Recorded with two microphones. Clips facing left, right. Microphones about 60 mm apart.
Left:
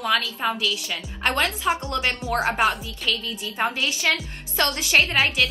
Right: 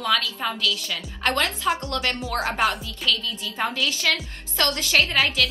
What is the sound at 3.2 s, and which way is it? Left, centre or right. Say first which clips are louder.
A woman's voice: left 1 dB; left.